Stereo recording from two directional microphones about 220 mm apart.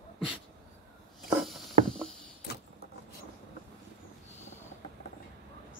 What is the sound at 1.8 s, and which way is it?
Rowboat, 5° left (ahead or behind).